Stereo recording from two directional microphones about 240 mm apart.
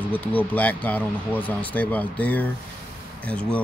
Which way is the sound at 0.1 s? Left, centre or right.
Centre.